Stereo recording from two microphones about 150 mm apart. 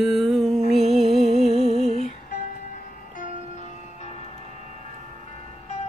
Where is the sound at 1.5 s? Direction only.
40° right (ahead or behind).